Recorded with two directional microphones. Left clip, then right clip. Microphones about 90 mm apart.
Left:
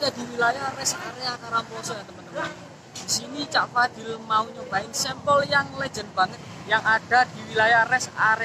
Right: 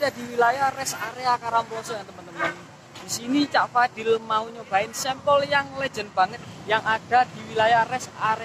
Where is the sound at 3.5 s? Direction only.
20° left (ahead or behind).